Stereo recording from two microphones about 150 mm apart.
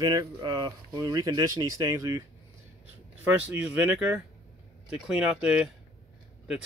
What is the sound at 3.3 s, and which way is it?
Speech, 10° right (ahead or behind).